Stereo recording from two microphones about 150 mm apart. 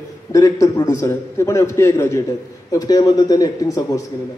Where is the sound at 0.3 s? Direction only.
25° left (ahead or behind).